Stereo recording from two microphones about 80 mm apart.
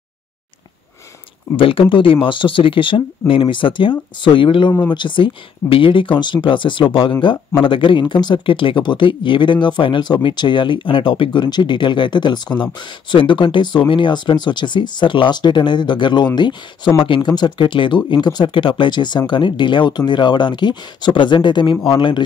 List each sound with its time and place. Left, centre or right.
1.6 s speech: left
13.1 s speech: left
17.0 s speech: left